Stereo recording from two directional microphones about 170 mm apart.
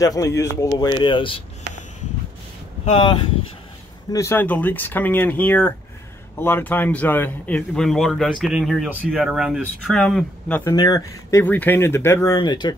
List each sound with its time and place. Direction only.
0.0 s speech: 20° left (ahead or behind)
2.8 s speech: 35° left (ahead or behind)
4.1 s speech: 15° left (ahead or behind)
10.6 s speech: 20° left (ahead or behind)